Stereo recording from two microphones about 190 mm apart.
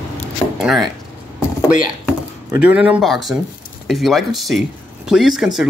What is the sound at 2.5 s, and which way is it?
Speech, 5° right (ahead or behind).